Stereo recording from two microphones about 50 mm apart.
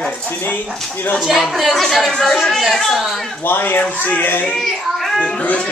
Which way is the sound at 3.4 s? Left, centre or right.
Left.